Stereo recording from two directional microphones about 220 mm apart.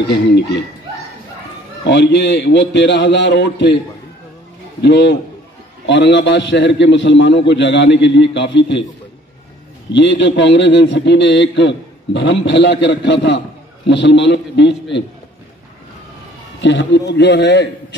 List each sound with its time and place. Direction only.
1.9 s a man's voice: 55° left (ahead or behind)
4.8 s a man's voice: 50° left (ahead or behind)
9.8 s a man's voice: 55° left (ahead or behind)
16.6 s a man's voice: 55° left (ahead or behind)